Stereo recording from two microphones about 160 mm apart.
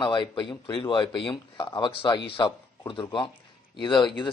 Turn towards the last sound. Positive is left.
turn(degrees=30)  # may be behind; listen again after turning